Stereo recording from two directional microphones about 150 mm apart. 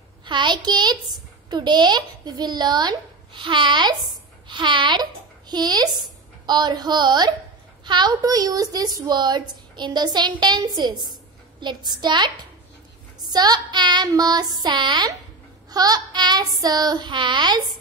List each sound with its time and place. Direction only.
0.2 s a woman's voice: 30° right (ahead or behind)
13.3 s a woman's voice: 25° right (ahead or behind)